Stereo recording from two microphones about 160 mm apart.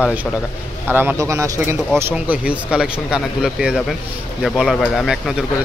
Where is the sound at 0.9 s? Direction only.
15° right (ahead or behind).